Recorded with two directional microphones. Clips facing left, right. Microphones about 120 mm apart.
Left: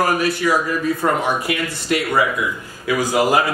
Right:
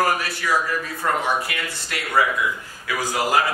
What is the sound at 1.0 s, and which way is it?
Speech, 30° left (ahead or behind).